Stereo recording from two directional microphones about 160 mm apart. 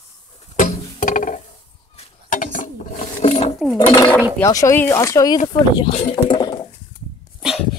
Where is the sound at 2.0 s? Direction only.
55° left (ahead or behind).